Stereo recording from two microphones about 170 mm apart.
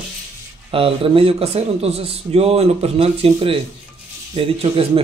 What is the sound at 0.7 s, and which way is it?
A man's voice, 35° right (ahead or behind).